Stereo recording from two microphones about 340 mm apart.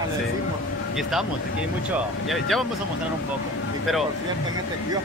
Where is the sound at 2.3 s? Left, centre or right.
Centre.